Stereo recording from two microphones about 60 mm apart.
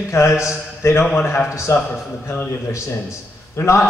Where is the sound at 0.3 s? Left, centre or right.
Centre.